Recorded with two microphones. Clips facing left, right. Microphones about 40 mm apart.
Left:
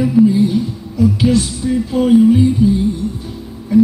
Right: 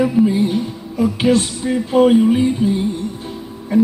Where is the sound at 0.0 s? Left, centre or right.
Right.